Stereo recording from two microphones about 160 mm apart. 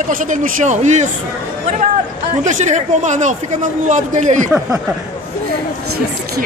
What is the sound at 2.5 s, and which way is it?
Speech, 50° right (ahead or behind).